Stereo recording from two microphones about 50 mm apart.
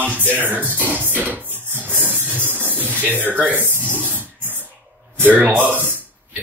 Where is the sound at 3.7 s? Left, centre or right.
Right.